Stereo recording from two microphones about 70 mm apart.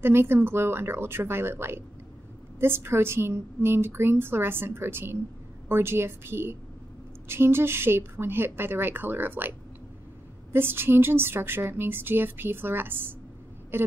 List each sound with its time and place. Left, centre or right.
0.0 s a woman's voice: right
10.5 s a woman's voice: right